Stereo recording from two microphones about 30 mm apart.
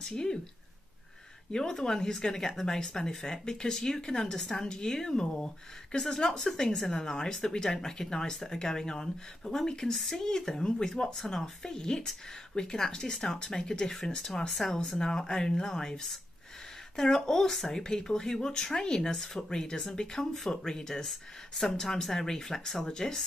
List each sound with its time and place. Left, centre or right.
0.0 s speech: left
1.5 s speech: left
4.6 s speech: left; by 14.8 s centre
15.0 s speech: left
16.9 s speech: centre
17.7 s speech: left
21.1 s speech: centre